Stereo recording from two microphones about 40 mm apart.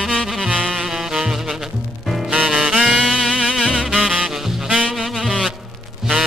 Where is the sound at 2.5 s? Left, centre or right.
Centre.